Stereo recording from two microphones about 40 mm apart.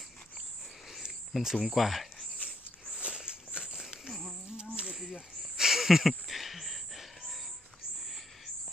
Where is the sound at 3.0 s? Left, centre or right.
Right.